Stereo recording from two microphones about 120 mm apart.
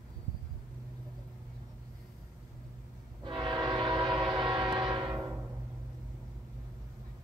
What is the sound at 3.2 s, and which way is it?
Train, 45° right (ahead or behind).